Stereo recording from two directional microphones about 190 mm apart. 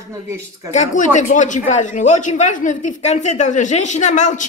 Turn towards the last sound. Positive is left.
turn(degrees=40)  # may be behind; listen again after turning